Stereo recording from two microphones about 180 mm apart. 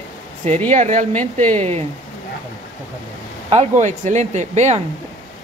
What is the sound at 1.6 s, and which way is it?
Speech, 35° right (ahead or behind).